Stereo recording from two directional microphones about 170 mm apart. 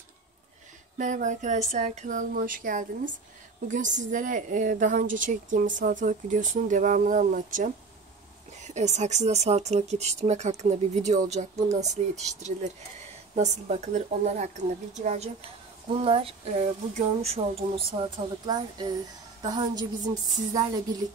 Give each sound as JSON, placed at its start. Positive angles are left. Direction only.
{"t": 0.9, "sound": "a woman's voice", "side_deg": -45}
{"t": 15.9, "sound": "a woman's voice", "side_deg": -35}